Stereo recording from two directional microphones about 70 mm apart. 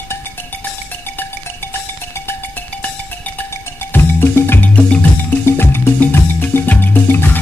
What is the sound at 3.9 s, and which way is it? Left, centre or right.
Music, left.